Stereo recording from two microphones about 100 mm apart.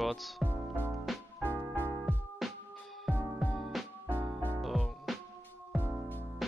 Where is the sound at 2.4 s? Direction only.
Centre (ahead or behind).